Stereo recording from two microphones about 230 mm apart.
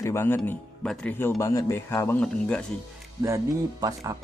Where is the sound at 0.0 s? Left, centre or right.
Centre.